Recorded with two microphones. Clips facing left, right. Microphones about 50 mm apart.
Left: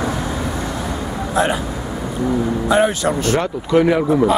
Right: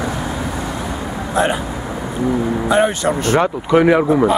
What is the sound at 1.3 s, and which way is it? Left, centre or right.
Speech, centre.